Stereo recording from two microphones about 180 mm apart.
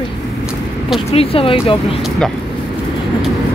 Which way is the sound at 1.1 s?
30° left (ahead or behind).